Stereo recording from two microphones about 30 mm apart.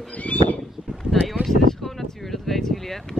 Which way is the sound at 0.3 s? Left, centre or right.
Left.